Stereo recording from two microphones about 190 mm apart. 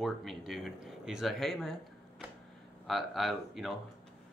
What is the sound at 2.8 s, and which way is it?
Speech, centre (ahead or behind).